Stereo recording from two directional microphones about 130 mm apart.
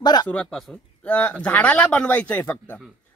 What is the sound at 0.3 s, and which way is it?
Speech, 5° left (ahead or behind).